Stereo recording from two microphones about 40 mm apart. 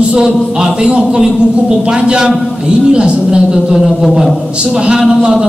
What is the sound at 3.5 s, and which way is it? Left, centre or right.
Speech, centre.